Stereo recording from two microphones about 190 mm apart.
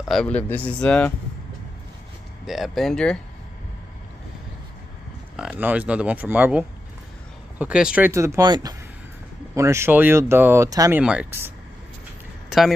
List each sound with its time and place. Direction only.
0.1 s speech: 5° left (ahead or behind)
2.4 s speech: centre (ahead or behind)
5.3 s speech: 5° right (ahead or behind)
11.0 s speech: 5° right (ahead or behind)
12.4 s a sound: centre (ahead or behind)